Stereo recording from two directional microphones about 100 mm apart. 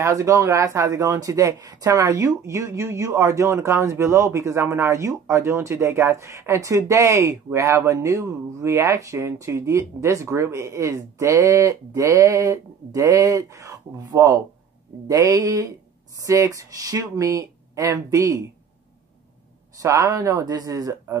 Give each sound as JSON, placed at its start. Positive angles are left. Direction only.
{"t": 0.0, "sound": "speech", "side_deg": -30}
{"t": 19.8, "sound": "speech", "side_deg": -30}